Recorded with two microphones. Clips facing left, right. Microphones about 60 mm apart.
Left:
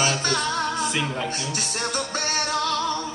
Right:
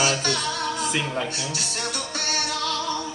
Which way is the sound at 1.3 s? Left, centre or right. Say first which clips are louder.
Left 1 dB; left.